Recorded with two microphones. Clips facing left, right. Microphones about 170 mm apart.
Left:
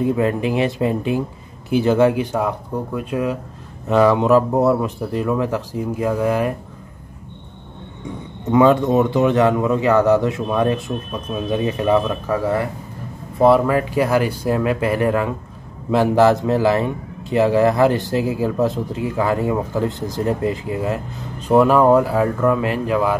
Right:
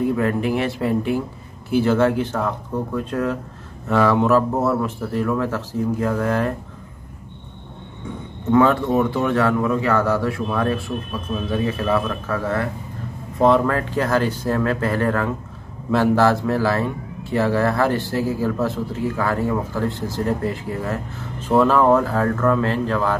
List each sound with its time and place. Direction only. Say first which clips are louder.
0.0 s a man's voice: left 2 dB; 20° left (ahead or behind)
8.5 s a man's voice: left 2 dB; 15° left (ahead or behind)